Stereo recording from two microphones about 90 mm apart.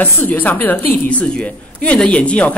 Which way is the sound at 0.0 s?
20° left (ahead or behind).